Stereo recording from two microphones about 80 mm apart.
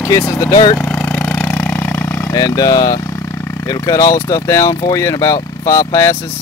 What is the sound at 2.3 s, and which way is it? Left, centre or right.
Speech, left.